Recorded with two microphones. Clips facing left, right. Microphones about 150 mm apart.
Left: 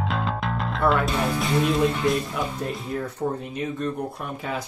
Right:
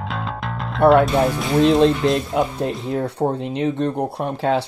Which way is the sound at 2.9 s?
70° right (ahead or behind).